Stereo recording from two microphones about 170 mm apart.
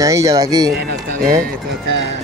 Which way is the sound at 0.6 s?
75° right (ahead or behind).